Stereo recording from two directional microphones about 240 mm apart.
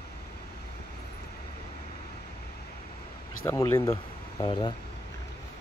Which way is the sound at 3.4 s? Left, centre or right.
Centre.